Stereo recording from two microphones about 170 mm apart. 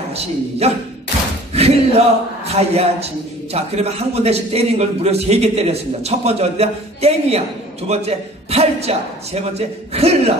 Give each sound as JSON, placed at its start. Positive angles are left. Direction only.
{"t": 0.6, "sound": "a man's voice", "side_deg": -40}
{"t": 1.5, "sound": "a sound", "side_deg": -40}
{"t": 2.7, "sound": "a man's voice", "side_deg": -35}